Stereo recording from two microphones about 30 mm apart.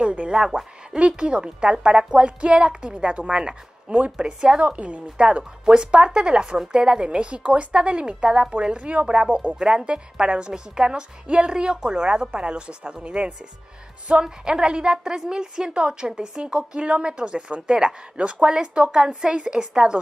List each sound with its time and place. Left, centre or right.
0.0 s a sound: right
0.3 s a woman's voice: right
4.7 s speech: right
5.1 s a woman's voice: right
8.7 s speech: right
9.0 s a woman's voice: right
9.3 s speech: right
9.8 s a woman's voice: right
14.2 s a woman's voice: right